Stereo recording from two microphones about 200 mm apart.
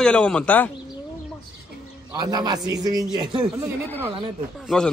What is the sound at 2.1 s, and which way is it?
A man's voice, 20° right (ahead or behind).